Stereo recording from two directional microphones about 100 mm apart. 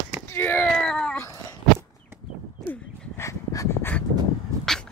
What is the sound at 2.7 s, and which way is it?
Dog, 25° left (ahead or behind).